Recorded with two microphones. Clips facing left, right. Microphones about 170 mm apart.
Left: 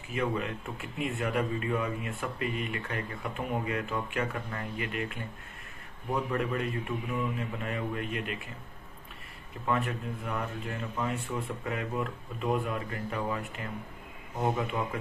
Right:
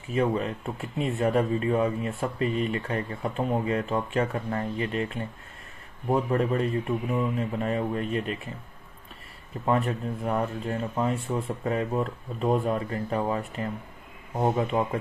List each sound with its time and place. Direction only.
0.1 s speech: 30° right (ahead or behind)
6.3 s speech: 35° right (ahead or behind)
9.7 s speech: 35° right (ahead or behind)